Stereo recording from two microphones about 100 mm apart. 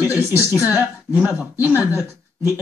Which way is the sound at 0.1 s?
20° right (ahead or behind).